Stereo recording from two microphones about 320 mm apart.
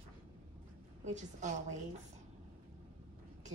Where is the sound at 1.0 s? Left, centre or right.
Right.